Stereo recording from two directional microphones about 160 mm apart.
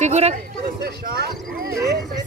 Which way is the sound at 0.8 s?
75° right (ahead or behind).